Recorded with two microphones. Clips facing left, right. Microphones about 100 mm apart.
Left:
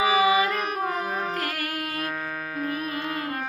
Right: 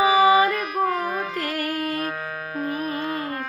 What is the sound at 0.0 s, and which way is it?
Singing, 35° right (ahead or behind).